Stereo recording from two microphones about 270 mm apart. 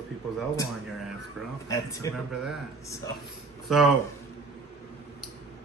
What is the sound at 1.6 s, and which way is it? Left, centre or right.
Speech, centre.